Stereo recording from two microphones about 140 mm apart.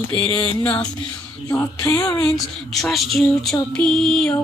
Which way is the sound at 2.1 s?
5° left (ahead or behind).